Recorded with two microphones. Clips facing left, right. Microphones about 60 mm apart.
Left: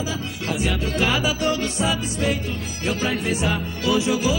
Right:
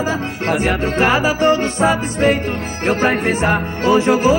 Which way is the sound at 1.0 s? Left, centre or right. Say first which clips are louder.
Right 7 dB; right.